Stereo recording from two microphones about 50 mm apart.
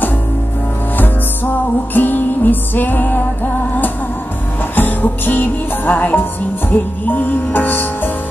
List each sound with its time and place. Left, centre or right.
0.9 s music: left
4.7 s music: left